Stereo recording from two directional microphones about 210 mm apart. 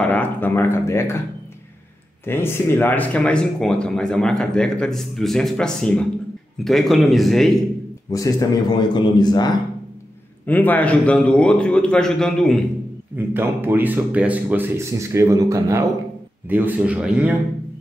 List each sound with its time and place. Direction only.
0.0 s a sound: 10° left (ahead or behind)
2.2 s speech: 10° left (ahead or behind)
8.1 s a man's voice: 15° left (ahead or behind)
10.4 s speech: 10° left (ahead or behind)
13.3 s speech: 10° right (ahead or behind)